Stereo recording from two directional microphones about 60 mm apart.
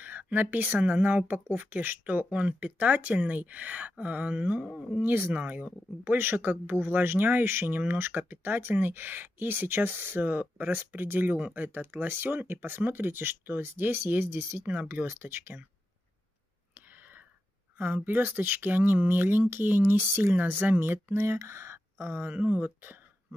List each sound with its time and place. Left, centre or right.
0.0 s speech: right
5.0 s speech: right
6.0 s speech: right
14.7 s speech: right
17.7 s speech: right
21.2 s speech: right
22.0 s speech: right